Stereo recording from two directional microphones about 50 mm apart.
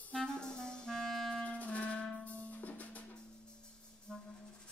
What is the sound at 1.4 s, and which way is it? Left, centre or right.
Music, left.